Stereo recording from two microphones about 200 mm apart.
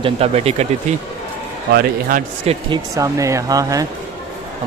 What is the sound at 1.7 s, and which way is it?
Speech, 45° right (ahead or behind).